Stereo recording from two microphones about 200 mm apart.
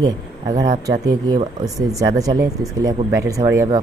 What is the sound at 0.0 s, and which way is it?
Speech, 20° right (ahead or behind).